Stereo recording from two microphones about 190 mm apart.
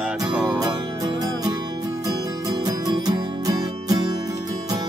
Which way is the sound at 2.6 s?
20° right (ahead or behind).